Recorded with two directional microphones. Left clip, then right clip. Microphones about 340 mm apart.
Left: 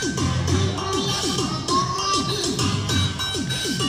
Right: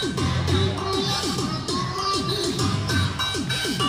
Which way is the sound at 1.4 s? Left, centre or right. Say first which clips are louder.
Left 5 dB; centre.